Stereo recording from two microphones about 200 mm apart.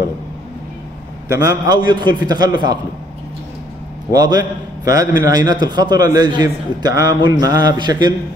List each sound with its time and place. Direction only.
1.7 s a man's voice: 20° right (ahead or behind)
4.1 s a man's voice: 20° right (ahead or behind)